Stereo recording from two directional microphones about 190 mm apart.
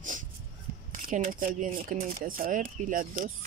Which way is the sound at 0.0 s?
45° right (ahead or behind).